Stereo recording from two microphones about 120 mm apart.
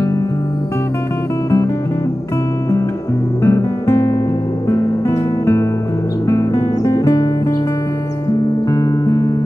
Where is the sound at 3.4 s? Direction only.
20° left (ahead or behind).